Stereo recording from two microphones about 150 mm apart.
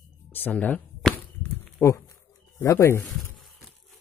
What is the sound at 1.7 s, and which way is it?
Speech, 20° left (ahead or behind).